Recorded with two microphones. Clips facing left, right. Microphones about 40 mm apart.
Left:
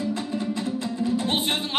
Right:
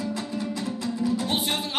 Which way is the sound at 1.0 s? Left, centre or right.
Left.